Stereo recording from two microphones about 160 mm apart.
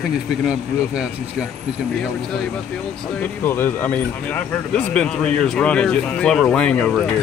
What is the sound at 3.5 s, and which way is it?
Speech, 10° left (ahead or behind).